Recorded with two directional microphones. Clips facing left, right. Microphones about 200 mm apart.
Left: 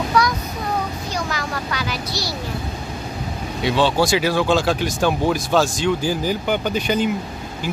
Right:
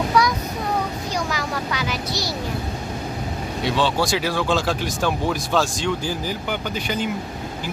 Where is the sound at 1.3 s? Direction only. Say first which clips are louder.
Even; 10° right (ahead or behind).